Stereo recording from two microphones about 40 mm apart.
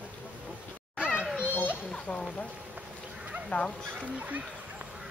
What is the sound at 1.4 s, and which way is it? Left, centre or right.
Children playing, left.